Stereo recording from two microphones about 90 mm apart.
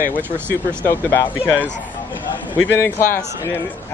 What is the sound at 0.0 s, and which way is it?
Speech, 20° left (ahead or behind).